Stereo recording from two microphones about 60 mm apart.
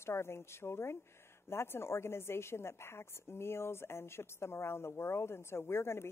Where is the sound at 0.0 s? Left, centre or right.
Left.